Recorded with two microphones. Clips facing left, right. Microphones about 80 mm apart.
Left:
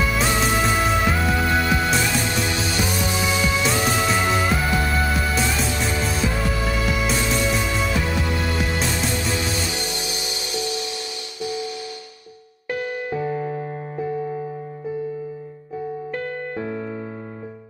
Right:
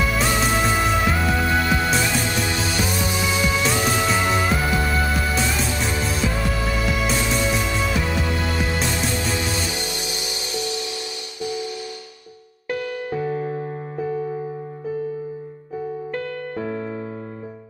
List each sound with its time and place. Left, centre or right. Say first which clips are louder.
0.0 s music: even; centre
2.4 s music: even; centre
3.1 s music: left 1 dB; centre
3.3 s music: even; centre
3.6 s music: even; centre
9.3 s music: even; centre
10.1 s music: even; left
12.6 s music: even; left
16.2 s music: even; left